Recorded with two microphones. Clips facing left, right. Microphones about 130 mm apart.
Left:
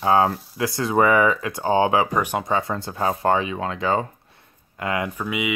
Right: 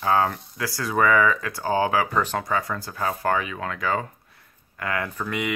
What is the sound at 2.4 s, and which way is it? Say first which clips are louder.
Speech: left 3 dB; 25° left (ahead or behind).